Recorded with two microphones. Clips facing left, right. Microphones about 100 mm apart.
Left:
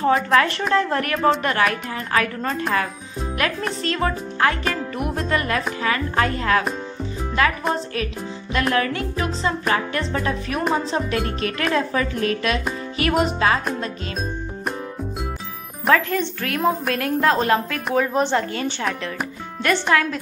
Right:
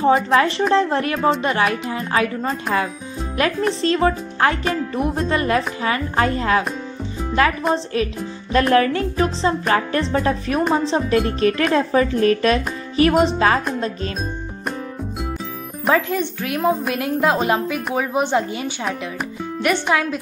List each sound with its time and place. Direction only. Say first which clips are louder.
0.3 s speech: right 2 dB; 20° right (ahead or behind)
3.4 s speech: right 6 dB; 30° right (ahead or behind)
7.7 s speech: right 4 dB; 30° right (ahead or behind)
15.9 s a woman's voice: even; 15° right (ahead or behind)